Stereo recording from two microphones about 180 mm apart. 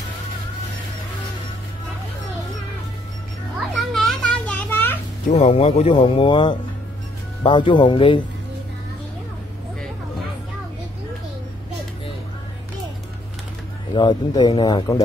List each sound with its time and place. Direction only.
3.7 s children playing: 5° left (ahead or behind)
5.3 s speech: 40° left (ahead or behind)
13.9 s speech: 25° left (ahead or behind)